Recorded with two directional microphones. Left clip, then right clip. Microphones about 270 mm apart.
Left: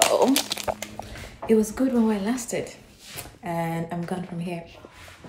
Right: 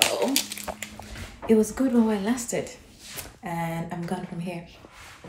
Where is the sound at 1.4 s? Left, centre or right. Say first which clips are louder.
Even; centre.